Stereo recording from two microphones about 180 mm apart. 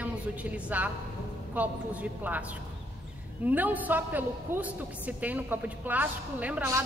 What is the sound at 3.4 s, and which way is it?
A woman's voice, 10° right (ahead or behind).